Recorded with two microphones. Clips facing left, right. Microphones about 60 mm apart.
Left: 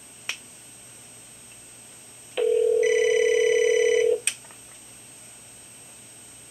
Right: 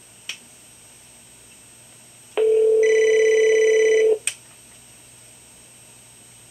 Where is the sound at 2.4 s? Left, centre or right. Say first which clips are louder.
Right 5 dB; right.